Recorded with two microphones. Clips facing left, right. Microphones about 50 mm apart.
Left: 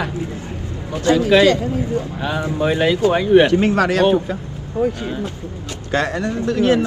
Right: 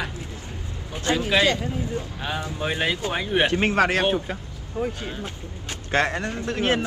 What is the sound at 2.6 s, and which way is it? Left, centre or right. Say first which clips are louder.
Speech: left 9 dB; centre.